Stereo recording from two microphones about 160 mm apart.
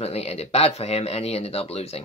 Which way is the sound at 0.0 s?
40° left (ahead or behind).